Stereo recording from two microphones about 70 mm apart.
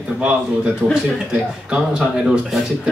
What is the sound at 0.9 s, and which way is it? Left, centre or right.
Speech, centre.